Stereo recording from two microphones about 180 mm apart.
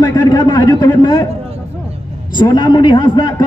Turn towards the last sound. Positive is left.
turn(degrees=20)  # may be behind; listen again after turning